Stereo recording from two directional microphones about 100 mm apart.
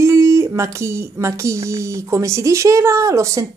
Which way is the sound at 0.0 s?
30° right (ahead or behind).